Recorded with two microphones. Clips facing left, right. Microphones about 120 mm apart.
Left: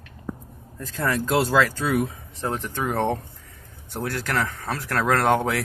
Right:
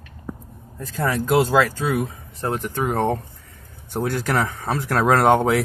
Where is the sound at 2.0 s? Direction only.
5° right (ahead or behind).